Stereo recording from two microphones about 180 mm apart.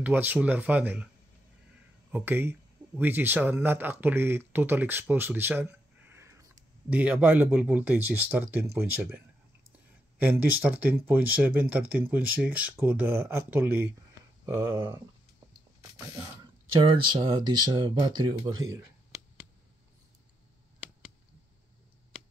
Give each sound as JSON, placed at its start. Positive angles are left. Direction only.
{"t": 0.0, "sound": "speech", "side_deg": -10}
{"t": 2.0, "sound": "speech", "side_deg": -10}
{"t": 16.8, "sound": "speech", "side_deg": -25}